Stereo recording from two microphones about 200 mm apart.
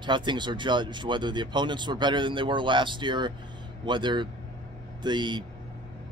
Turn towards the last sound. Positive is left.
turn(degrees=-20)  # may be behind; listen again after turning